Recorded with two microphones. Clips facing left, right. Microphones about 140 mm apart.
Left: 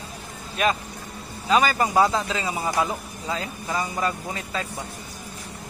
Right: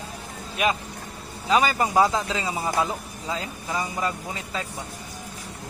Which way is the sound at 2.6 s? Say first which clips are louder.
Left 1 dB; 15° left (ahead or behind).